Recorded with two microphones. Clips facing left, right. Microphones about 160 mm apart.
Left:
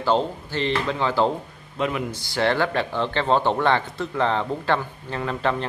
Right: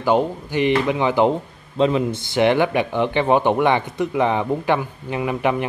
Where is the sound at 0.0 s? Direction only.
15° right (ahead or behind).